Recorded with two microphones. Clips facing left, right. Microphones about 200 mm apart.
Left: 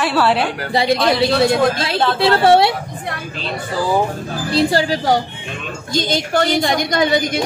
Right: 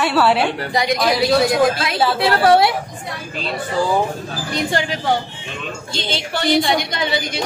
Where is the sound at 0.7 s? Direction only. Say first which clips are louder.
Left 4 dB; 30° left (ahead or behind).